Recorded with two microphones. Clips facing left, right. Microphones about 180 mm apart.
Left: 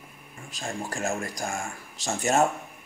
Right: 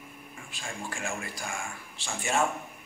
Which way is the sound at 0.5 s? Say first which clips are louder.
Left 6 dB; 40° left (ahead or behind).